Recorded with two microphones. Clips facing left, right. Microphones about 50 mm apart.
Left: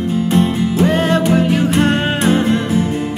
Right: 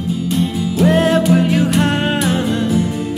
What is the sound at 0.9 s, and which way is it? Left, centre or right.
Music, centre.